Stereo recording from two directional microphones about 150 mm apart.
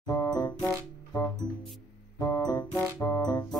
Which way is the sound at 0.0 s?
25° left (ahead or behind).